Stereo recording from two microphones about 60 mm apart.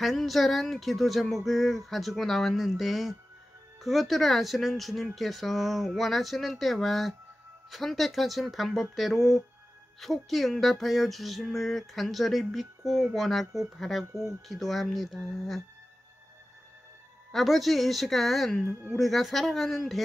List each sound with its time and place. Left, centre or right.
0.0 s music: centre
17.3 s music: centre
18.7 s speech: right
18.9 s music: centre